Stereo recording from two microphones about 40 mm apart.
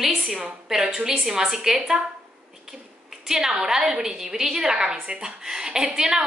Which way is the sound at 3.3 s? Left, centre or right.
Centre.